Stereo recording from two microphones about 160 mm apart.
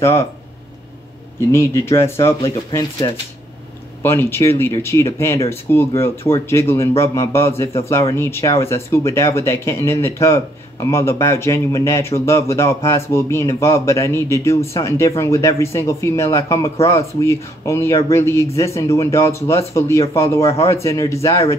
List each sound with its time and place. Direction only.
0.0 s a man's voice: 15° left (ahead or behind)
1.5 s a man's voice: 15° left (ahead or behind)
4.0 s a man's voice: 15° left (ahead or behind)